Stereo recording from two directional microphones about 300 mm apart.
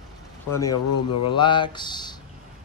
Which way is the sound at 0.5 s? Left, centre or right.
Centre.